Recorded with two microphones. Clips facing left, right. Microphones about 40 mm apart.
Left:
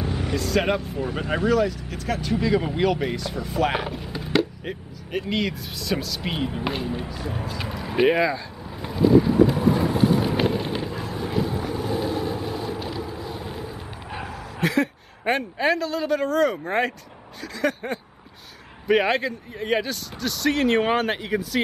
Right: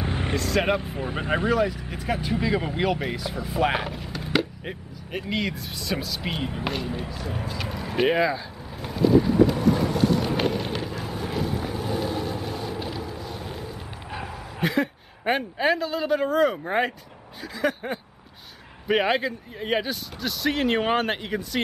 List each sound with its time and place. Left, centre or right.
0.0 s vehicle: right
0.4 s a man's voice: centre
0.7 s a man's voice: right; by 8.4 s centre
8.8 s boat: centre
10.2 s vehicle: centre
14.6 s a man's voice: centre